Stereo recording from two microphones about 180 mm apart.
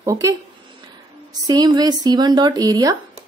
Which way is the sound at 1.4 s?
20° right (ahead or behind).